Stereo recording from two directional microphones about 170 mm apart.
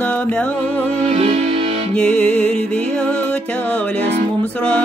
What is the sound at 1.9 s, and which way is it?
Music, 5° left (ahead or behind).